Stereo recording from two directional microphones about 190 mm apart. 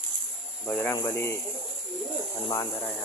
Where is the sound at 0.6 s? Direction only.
5° left (ahead or behind).